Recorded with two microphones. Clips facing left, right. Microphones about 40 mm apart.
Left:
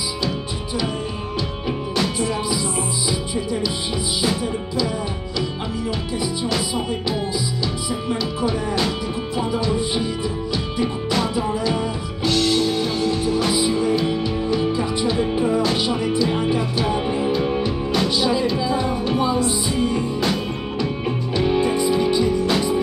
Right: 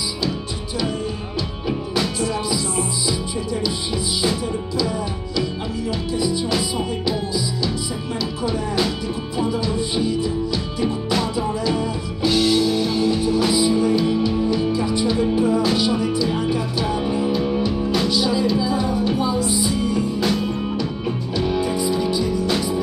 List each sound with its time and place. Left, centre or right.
2.1 s music: centre
4.2 s music: centre
7.3 s music: centre
12.3 s music: centre
12.6 s music: centre; by 20.1 s left
20.2 s music: centre
21.4 s music: left